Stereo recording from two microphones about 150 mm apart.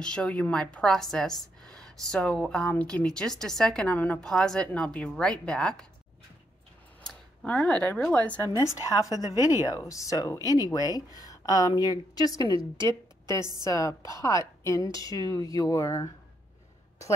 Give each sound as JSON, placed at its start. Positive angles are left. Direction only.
{"t": 0.0, "sound": "a woman's voice", "side_deg": 5}
{"t": 7.1, "sound": "speech", "side_deg": 10}
{"t": 8.5, "sound": "a woman's voice", "side_deg": 20}